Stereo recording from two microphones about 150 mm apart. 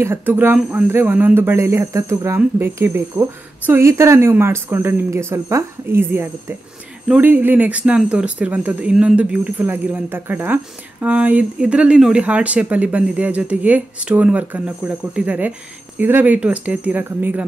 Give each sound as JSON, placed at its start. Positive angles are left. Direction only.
{"t": 0.0, "sound": "speech", "side_deg": -15}